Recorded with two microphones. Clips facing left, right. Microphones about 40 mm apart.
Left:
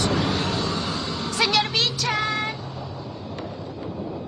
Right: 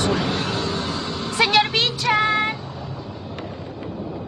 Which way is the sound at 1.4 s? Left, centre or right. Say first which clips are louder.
Right 4 dB; right.